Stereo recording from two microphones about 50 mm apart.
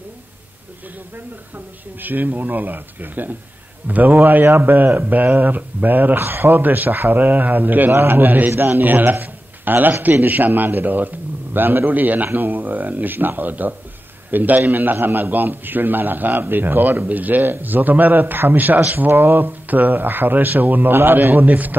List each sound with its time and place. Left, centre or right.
1.1 s a man's voice: right